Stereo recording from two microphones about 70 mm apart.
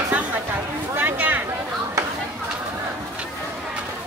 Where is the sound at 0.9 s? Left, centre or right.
Right.